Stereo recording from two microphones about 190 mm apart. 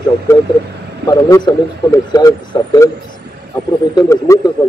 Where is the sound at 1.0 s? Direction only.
20° left (ahead or behind).